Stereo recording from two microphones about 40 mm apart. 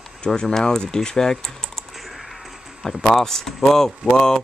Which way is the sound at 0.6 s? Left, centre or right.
Centre.